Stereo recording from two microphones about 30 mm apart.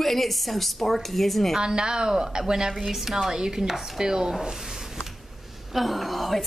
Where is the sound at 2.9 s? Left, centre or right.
Centre.